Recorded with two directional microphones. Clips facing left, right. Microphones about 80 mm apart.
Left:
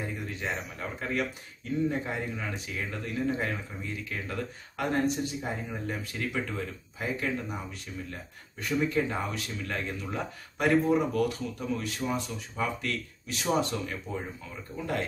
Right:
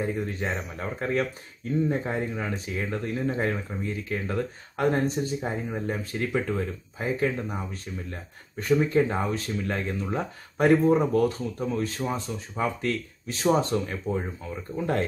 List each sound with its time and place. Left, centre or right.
0.0 s speech: right